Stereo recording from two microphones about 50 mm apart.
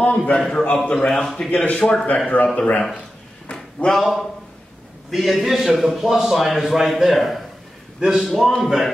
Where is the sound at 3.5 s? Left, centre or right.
Centre.